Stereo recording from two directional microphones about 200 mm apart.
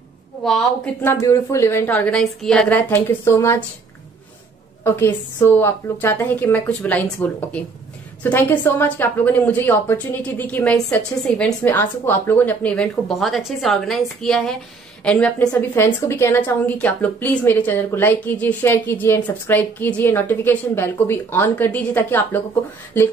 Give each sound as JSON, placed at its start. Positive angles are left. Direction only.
{"t": 1.0, "sound": "a woman's voice", "side_deg": 15}
{"t": 4.8, "sound": "a woman's voice", "side_deg": 10}